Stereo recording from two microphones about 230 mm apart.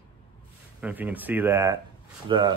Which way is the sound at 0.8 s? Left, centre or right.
Centre.